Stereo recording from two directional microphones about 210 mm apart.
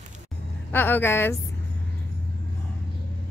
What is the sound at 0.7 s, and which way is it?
Speech, 10° left (ahead or behind).